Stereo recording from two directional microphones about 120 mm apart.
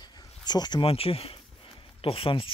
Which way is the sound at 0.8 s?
55° left (ahead or behind).